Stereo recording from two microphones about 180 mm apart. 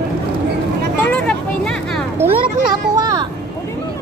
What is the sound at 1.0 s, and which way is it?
Children playing, 5° left (ahead or behind).